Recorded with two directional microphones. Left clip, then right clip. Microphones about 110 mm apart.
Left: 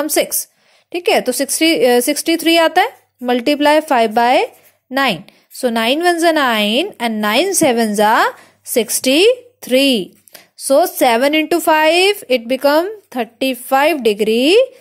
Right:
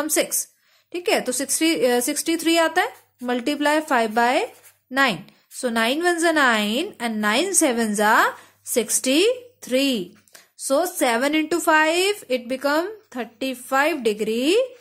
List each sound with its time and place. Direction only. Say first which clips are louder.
0.0 s a woman's voice: left 6 dB; 30° left (ahead or behind)